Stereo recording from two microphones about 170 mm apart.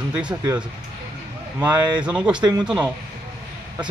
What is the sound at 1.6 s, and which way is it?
Speech, 10° right (ahead or behind).